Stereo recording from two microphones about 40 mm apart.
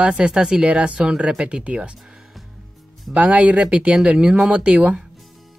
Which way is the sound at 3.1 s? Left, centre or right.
Right.